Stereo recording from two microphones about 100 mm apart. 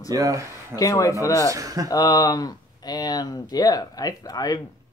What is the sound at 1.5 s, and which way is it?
Speech, 35° right (ahead or behind).